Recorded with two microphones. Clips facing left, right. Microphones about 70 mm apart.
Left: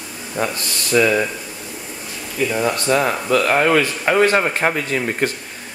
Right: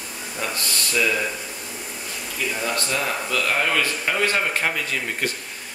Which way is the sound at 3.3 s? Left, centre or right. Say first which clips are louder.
Left 8 dB; left.